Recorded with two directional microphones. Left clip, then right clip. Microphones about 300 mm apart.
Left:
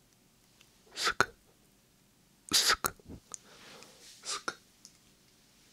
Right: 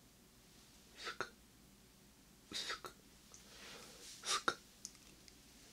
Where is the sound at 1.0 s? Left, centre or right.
Left.